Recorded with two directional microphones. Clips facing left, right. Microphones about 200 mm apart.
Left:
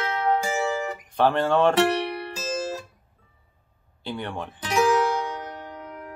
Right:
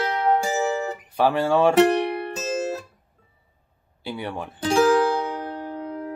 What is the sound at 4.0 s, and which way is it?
Speech, 10° right (ahead or behind).